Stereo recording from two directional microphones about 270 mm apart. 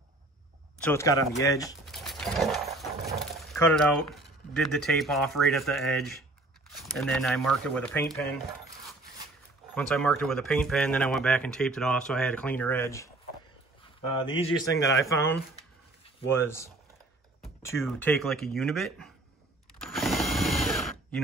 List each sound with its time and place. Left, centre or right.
0.8 s speech: centre
1.9 s horse: centre
3.3 s speech: centre
9.8 s speech: centre; by 14.5 s left
16.3 s speech: centre
17.6 s a sound: centre
17.8 s speech: centre
19.8 s drill: centre